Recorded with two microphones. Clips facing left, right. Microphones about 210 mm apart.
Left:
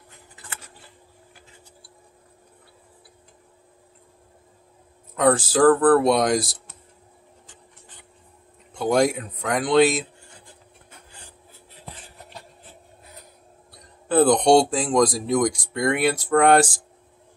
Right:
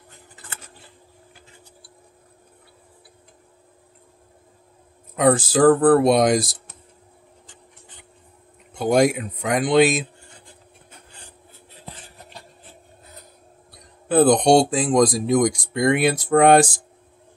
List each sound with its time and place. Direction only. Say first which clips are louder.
5.1 s speech: right 2 dB; 15° right (ahead or behind)
8.7 s speech: right 2 dB; 15° right (ahead or behind)
14.0 s speech: right 2 dB; 15° right (ahead or behind)